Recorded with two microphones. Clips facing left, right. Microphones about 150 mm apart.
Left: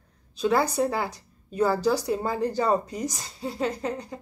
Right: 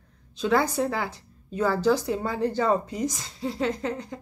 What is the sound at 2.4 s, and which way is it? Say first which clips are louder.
Speech: right 2 dB; 35° left (ahead or behind).